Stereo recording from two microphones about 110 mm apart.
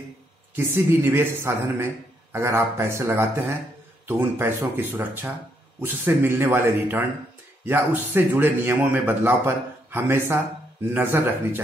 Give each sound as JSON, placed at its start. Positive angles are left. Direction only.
{"t": 0.6, "sound": "a man's voice", "side_deg": -25}